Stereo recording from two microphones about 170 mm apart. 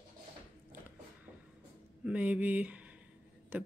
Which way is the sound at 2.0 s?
5° right (ahead or behind).